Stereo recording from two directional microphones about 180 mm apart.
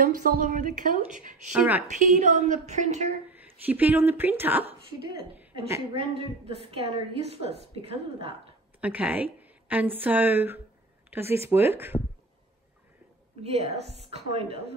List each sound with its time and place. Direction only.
0.0 s a woman's voice: 50° right (ahead or behind)
3.3 s a woman's voice: 10° right (ahead or behind)
5.3 s a sound: 10° right (ahead or behind)
5.9 s a woman's voice: 30° right (ahead or behind)
8.8 s a woman's voice: 10° right (ahead or behind)
13.4 s a woman's voice: 35° right (ahead or behind)